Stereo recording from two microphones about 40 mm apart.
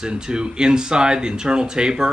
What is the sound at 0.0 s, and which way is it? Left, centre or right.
Speech, centre.